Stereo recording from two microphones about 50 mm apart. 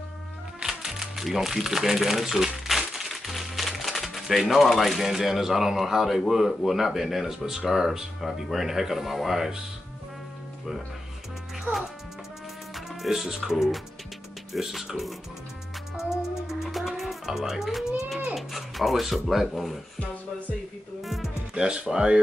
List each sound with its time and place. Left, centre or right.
0.6 s music: centre
4.4 s speech: centre
12.7 s speech: centre
20.0 s speech: left
21.0 s speech: centre
21.5 s speech: centre